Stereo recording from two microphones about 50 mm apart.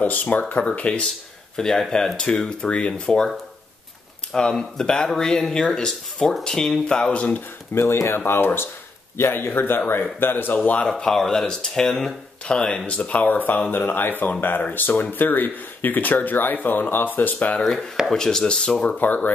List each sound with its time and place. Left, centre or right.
0.0 s speech: left
1.6 s speech: centre
4.3 s speech: centre
7.7 s speech: left
10.9 s speech: centre; by 13.6 s left
13.7 s speech: left
18.0 s speech: centre
18.9 s speech: left